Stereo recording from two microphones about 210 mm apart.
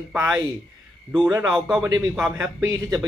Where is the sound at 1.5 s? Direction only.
5° right (ahead or behind).